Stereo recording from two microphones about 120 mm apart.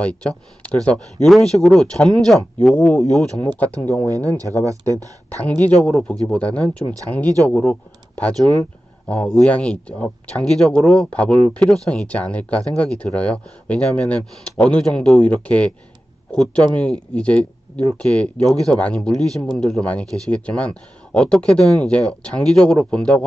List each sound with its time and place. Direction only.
0.0 s speech: 10° left (ahead or behind)
4.1 s speech: 30° right (ahead or behind)
5.3 s speech: 15° left (ahead or behind)